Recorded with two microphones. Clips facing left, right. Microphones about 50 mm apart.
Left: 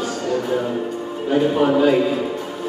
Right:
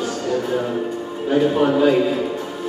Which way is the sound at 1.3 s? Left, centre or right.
Centre.